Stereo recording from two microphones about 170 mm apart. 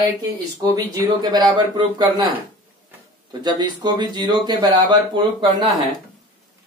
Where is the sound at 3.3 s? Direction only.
25° right (ahead or behind).